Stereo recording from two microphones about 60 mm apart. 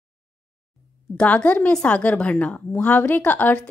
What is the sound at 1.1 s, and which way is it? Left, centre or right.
A woman's voice, left.